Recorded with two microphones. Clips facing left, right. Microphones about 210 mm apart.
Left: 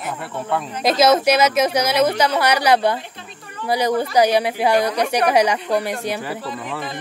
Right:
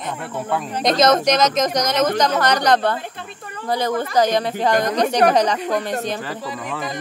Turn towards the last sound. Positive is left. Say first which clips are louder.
# even
turn(degrees=5)  # may be behind; listen again after turning